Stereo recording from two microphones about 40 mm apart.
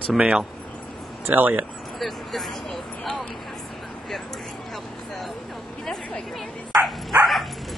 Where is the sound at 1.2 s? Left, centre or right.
Right.